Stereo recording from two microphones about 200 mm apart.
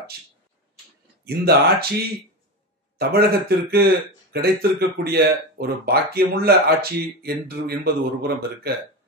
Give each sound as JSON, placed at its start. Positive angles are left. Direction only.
{"t": 1.2, "sound": "speech", "side_deg": -50}
{"t": 3.0, "sound": "speech", "side_deg": -50}